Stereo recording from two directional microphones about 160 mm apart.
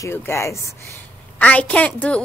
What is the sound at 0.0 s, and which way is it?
A woman's voice, 15° left (ahead or behind).